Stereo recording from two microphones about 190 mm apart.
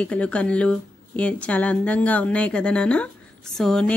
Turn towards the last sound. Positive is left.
turn(degrees=5)  # may be behind; listen again after turning